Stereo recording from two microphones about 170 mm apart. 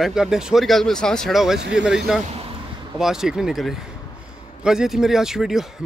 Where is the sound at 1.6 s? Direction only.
90° right.